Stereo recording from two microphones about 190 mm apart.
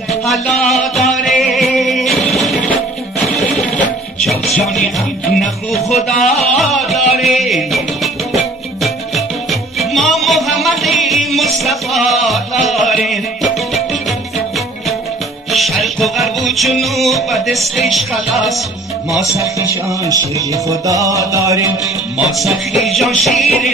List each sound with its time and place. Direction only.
0.2 s music: centre (ahead or behind)
6.0 s music: centre (ahead or behind)
15.5 s music: centre (ahead or behind)
19.9 s music: 15° right (ahead or behind)
22.4 s music: centre (ahead or behind)